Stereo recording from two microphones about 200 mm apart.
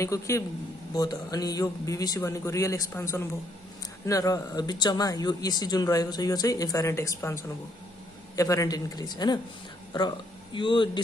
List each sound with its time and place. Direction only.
0.0 s speech: 15° left (ahead or behind)
8.4 s a man's voice: 15° left (ahead or behind)